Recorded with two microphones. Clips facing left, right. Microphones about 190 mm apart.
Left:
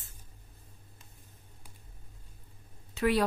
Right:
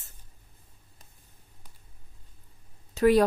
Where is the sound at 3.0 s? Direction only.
45° right (ahead or behind).